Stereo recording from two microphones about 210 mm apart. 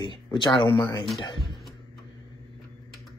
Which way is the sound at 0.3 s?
25° left (ahead or behind).